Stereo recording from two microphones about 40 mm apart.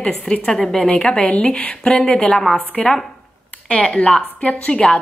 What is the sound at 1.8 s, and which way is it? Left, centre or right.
A woman's voice, centre.